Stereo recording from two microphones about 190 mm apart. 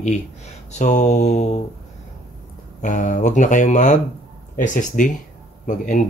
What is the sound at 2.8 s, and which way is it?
Speech, 40° left (ahead or behind).